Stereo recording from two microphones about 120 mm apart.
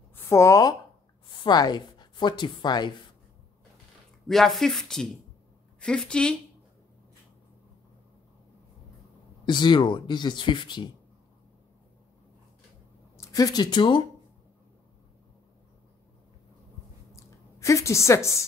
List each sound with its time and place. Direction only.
0.1 s speech: 25° left (ahead or behind)
4.3 s a woman's voice: centre (ahead or behind)
9.5 s speech: 40° left (ahead or behind)
13.2 s speech: 30° left (ahead or behind)
17.1 s a sound: 25° left (ahead or behind)